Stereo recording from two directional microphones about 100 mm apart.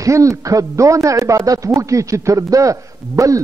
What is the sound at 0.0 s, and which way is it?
Chopping, 35° right (ahead or behind).